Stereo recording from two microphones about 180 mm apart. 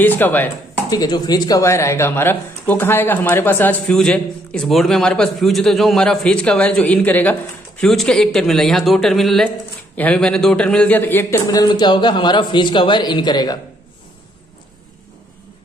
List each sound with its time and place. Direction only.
0.0 s a man's voice: 10° left (ahead or behind)